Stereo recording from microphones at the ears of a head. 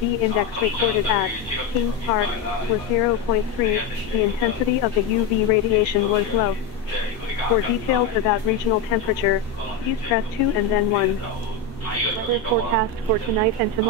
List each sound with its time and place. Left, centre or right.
0.0 s speech: left
12.3 s speech: right